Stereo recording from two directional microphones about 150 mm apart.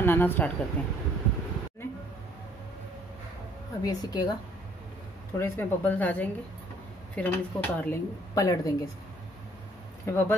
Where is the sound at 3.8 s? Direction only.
25° left (ahead or behind).